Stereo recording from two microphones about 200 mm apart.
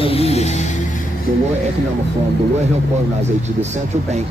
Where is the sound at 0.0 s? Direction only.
30° left (ahead or behind).